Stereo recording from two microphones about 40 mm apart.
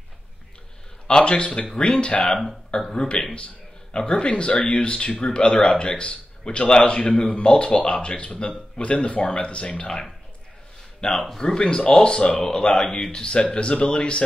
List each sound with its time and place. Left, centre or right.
1.0 s speech: left
2.2 s speech: centre
2.8 s speech: centre
11.0 s speech: centre
11.6 s speech: left